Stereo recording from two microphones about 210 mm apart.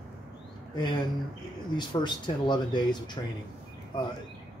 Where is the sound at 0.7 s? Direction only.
20° left (ahead or behind).